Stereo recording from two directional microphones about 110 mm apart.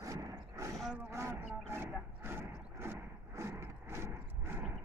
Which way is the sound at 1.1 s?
25° right (ahead or behind).